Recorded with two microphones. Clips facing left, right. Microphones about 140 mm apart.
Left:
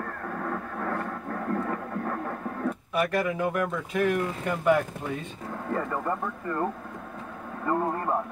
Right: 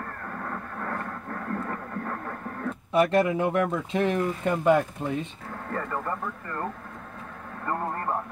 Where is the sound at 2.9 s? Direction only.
25° right (ahead or behind).